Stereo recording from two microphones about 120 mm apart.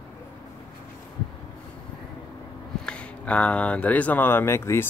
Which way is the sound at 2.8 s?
10° left (ahead or behind).